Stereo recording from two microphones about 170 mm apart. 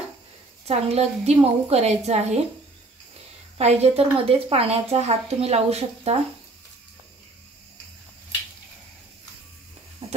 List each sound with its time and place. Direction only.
0.7 s a woman's voice: 35° right (ahead or behind)
3.5 s a woman's voice: 40° right (ahead or behind)
10.0 s a sound: 40° right (ahead or behind)